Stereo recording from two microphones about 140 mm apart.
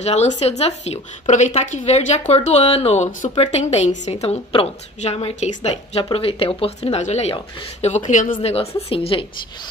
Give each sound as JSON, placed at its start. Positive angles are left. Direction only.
{"t": 0.0, "sound": "a woman's voice", "side_deg": 55}
{"t": 8.4, "sound": "a woman's voice", "side_deg": 45}